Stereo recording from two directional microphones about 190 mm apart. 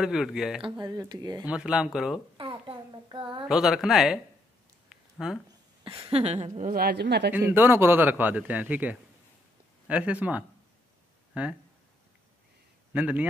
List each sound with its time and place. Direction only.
0.0 s speech: 5° right (ahead or behind)
0.7 s speech: 20° right (ahead or behind)
1.4 s speech: 5° right (ahead or behind)
2.3 s a sound: 25° right (ahead or behind)
3.4 s speech: 5° right (ahead or behind)
4.8 s a sound: centre (ahead or behind)
5.9 s a sound: 15° right (ahead or behind)
6.1 s a woman's voice: 35° right (ahead or behind)
6.7 s speech: 55° right (ahead or behind)
7.3 s a man's voice: 10° right (ahead or behind)
12.9 s a man's voice: 10° right (ahead or behind)